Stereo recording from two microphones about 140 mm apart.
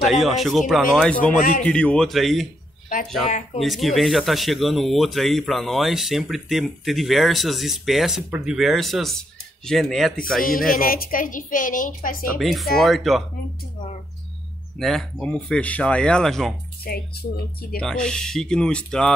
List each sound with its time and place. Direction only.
0.0 s speech: centre (ahead or behind)
3.5 s speech: centre (ahead or behind)
10.7 s a woman's voice: 90° left
12.4 s speech: centre (ahead or behind)
14.8 s speech: centre (ahead or behind)
17.7 s speech: 5° left (ahead or behind)